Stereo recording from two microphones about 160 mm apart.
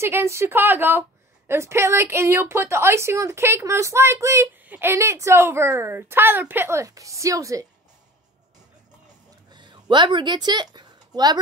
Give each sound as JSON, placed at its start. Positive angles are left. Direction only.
{"t": 0.0, "sound": "a woman's voice", "side_deg": -15}
{"t": 9.5, "sound": "speech", "side_deg": -30}